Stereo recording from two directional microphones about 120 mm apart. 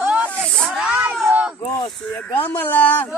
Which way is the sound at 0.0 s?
10° right (ahead or behind).